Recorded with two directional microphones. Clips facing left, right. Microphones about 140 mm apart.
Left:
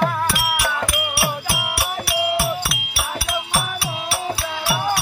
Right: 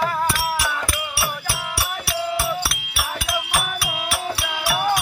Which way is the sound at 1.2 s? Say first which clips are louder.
Left 3 dB; 15° left (ahead or behind).